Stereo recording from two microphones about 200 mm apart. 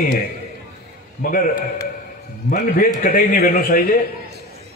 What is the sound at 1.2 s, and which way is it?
Speech, 45° left (ahead or behind).